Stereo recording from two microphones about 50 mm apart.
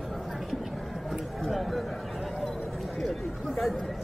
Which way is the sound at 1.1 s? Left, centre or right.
Centre.